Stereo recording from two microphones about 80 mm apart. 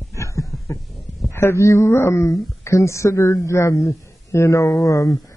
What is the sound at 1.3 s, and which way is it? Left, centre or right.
A man's voice, left.